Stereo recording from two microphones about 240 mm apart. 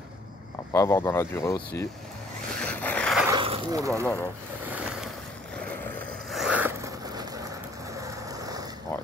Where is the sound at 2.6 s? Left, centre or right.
Centre.